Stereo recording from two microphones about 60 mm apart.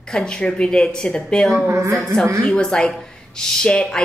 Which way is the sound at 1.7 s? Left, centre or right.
Right.